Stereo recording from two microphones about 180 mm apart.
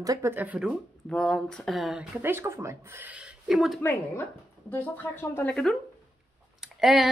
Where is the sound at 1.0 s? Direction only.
5° left (ahead or behind).